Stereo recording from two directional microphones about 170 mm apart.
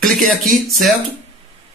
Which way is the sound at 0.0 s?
Centre (ahead or behind).